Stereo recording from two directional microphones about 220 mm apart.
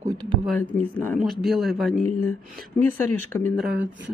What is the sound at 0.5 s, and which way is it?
Speech, 5° left (ahead or behind).